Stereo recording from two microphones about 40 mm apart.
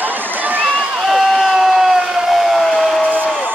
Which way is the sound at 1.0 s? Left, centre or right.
Centre.